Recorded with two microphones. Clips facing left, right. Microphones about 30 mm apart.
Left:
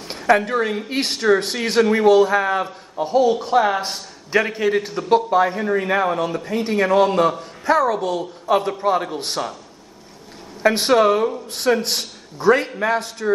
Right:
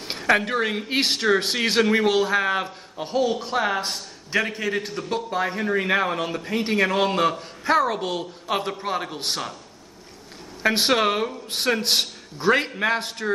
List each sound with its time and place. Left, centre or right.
0.0 s a sound: centre
0.5 s a man's voice: centre
1.9 s a man's voice: centre
3.2 s a man's voice: centre
5.8 s a man's voice: centre
8.5 s a man's voice: centre
10.6 s a man's voice: centre